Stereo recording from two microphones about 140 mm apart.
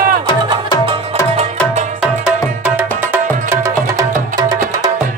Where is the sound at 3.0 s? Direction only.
15° right (ahead or behind).